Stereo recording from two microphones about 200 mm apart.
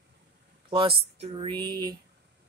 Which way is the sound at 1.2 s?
25° right (ahead or behind).